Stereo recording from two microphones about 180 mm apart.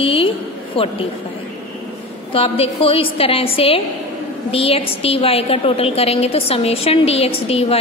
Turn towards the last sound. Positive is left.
turn(degrees=35)  # may be behind; listen again after turning